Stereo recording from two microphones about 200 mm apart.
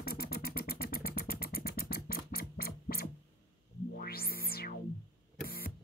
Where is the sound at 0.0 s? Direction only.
50° left (ahead or behind).